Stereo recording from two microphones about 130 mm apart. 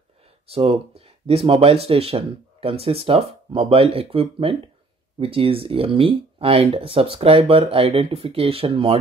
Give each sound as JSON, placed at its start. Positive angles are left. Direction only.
{"t": 0.5, "sound": "speech", "side_deg": -50}